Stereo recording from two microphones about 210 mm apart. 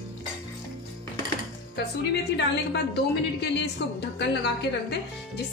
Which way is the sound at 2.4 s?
55° left (ahead or behind).